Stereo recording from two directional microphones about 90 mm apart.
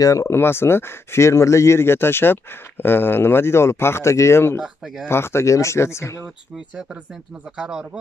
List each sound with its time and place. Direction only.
0.0 s speech: 35° left (ahead or behind)
4.6 s speech: 5° right (ahead or behind)
5.0 s speech: 30° left (ahead or behind)
6.5 s speech: 10° right (ahead or behind)